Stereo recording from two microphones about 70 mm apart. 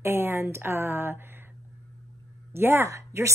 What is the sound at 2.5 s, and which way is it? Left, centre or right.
Speech, right.